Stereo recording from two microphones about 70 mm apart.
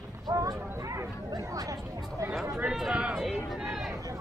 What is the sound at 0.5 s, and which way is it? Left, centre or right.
Speech, right.